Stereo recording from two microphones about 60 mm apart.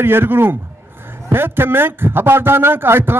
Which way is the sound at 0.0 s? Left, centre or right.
Right.